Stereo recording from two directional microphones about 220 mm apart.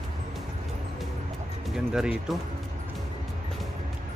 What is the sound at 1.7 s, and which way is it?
Speech, 5° right (ahead or behind).